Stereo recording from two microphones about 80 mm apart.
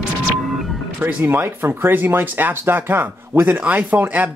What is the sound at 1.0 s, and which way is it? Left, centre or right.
Speech, right.